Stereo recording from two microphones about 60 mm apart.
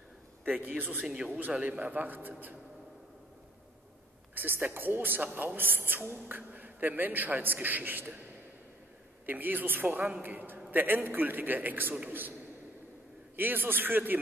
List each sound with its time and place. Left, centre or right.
1.0 s speech: centre
1.6 s a man's voice: right
4.4 s a man's voice: right
5.3 s a man's voice: centre
5.6 s a man's voice: right
9.2 s a man's voice: right
13.4 s a man's voice: right